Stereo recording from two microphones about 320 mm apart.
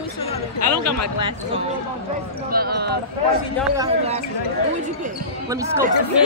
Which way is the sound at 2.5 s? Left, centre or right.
Right.